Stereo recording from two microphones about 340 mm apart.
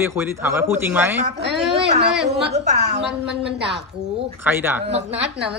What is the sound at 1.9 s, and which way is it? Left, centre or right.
A woman's voice, right.